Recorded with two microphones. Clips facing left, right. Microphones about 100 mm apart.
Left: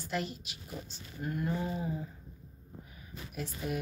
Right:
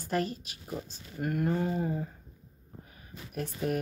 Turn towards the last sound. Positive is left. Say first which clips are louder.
# right 5 dB
turn(degrees=-50)  # may be behind; listen again after turning